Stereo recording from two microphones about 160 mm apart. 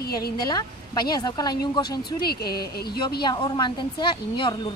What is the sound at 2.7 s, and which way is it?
Speech, 80° left.